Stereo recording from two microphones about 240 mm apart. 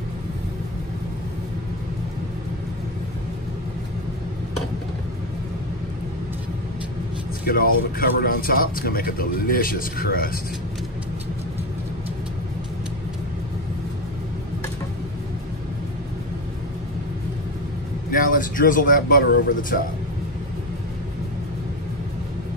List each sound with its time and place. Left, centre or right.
7.4 s speech: left
18.2 s speech: left